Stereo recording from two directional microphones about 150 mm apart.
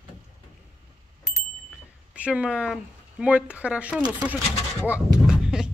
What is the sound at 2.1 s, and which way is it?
Speech, 10° right (ahead or behind).